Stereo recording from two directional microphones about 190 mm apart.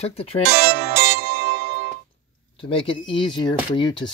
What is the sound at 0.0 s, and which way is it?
Speech, 30° left (ahead or behind).